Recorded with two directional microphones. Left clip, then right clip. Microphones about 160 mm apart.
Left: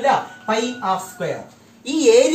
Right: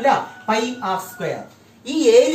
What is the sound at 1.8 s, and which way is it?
Speech, 30° left (ahead or behind).